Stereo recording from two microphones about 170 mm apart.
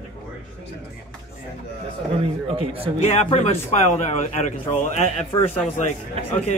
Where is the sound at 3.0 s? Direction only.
40° left (ahead or behind).